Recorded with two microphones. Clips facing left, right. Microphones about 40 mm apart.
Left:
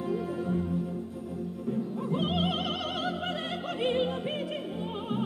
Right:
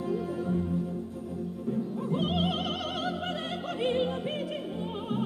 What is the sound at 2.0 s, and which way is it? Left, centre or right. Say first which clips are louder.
Opera: even; centre.